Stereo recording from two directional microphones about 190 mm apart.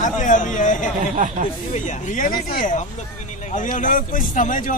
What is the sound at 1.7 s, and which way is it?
Speech, 40° left (ahead or behind).